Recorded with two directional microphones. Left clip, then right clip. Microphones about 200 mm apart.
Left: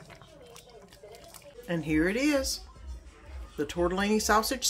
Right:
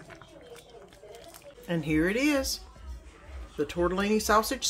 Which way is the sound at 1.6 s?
5° right (ahead or behind).